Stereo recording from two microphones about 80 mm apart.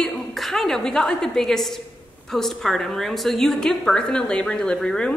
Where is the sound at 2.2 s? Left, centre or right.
Centre.